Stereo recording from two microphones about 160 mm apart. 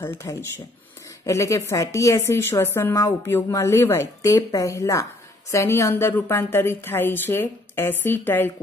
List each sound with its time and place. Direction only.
0.0 s a woman's voice: 15° left (ahead or behind)